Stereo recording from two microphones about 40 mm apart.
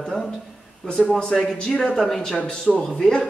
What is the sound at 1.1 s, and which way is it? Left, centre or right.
A man's voice, left.